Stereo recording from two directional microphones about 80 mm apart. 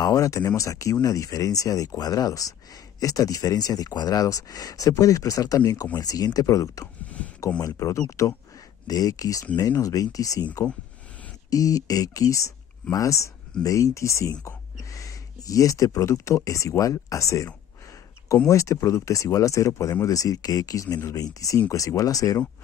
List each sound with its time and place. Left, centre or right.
0.0 s speech: left
11.5 s speech: left
18.5 s speech: left